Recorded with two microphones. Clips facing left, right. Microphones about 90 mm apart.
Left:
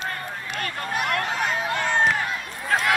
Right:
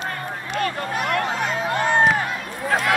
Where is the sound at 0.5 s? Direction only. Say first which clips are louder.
Right 6 dB; 25° right (ahead or behind).